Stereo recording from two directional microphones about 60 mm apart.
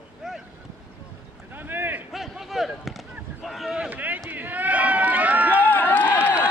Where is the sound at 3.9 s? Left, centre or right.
Right.